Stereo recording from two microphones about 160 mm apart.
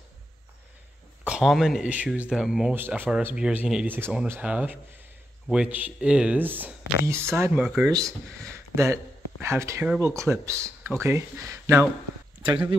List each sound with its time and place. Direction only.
1.2 s speech: 5° right (ahead or behind)
2.7 s speech: 10° right (ahead or behind)
7.5 s speech: 5° right (ahead or behind)
8.7 s speech: 15° right (ahead or behind)